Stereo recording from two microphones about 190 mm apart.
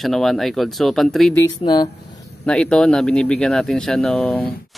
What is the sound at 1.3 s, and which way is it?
Speech, 20° left (ahead or behind).